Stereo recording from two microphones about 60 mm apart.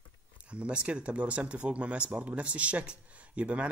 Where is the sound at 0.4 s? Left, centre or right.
Centre.